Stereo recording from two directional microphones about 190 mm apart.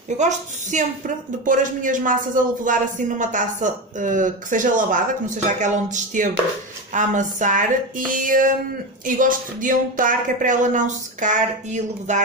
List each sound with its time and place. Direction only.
0.2 s a woman's voice: 40° right (ahead or behind)